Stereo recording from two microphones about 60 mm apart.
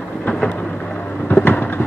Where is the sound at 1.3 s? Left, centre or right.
Left.